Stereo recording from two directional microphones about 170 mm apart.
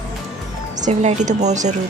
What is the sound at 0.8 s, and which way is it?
Speech, 40° right (ahead or behind).